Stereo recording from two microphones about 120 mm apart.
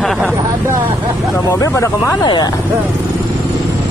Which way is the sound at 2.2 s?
40° left (ahead or behind).